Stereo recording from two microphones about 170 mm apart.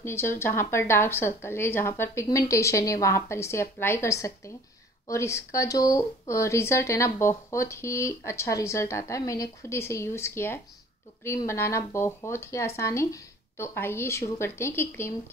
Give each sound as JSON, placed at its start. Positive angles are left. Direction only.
{"t": 0.0, "sound": "speech", "side_deg": 15}